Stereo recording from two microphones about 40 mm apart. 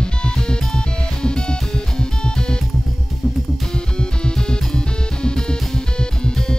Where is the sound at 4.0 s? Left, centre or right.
Left.